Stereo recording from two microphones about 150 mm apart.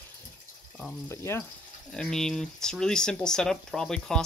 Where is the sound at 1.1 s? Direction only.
15° left (ahead or behind).